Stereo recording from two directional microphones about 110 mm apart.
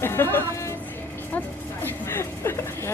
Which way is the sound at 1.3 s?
20° left (ahead or behind).